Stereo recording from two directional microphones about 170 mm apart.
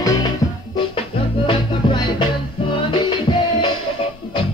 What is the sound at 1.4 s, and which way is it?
Music, 30° left (ahead or behind).